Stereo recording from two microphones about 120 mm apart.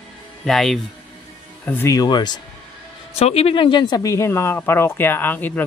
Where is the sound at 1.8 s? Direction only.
35° left (ahead or behind).